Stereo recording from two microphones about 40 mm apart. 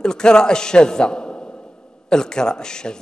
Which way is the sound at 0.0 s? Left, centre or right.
Centre.